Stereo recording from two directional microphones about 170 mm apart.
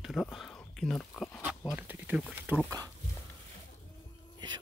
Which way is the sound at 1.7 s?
10° right (ahead or behind).